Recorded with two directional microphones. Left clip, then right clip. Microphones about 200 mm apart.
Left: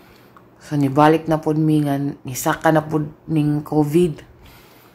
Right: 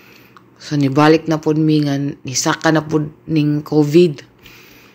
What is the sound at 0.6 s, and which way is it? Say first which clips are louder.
Speech: right 2 dB; 10° right (ahead or behind).